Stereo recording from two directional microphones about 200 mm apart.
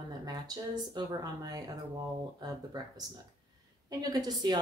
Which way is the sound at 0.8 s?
20° right (ahead or behind).